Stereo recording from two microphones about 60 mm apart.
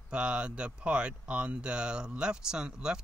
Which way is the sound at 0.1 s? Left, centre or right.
Centre.